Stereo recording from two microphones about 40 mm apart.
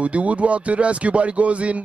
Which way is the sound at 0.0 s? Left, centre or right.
Right.